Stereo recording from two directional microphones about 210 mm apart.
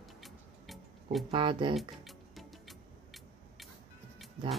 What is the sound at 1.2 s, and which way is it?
Speech, 25° right (ahead or behind).